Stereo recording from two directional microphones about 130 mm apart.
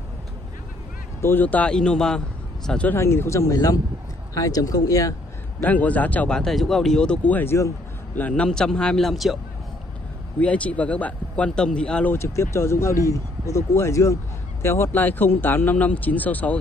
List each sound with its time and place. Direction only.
1.2 s speech: 15° left (ahead or behind)
3.0 s speech: 20° left (ahead or behind)
5.6 s speech: 10° left (ahead or behind)
8.2 s speech: 10° left (ahead or behind)
10.4 s speech: 10° left (ahead or behind)